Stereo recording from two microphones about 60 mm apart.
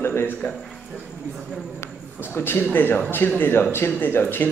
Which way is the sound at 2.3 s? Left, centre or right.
Left.